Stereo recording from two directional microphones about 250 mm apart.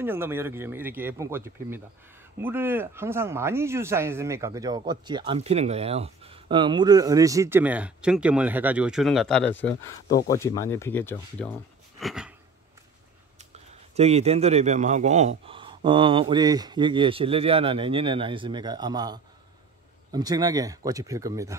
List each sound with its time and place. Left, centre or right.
0.0 s speech: centre
12.0 s a sound: centre
13.9 s a man's voice: right